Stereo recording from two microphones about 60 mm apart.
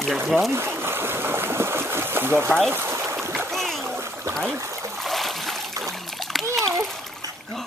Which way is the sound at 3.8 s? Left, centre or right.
Right.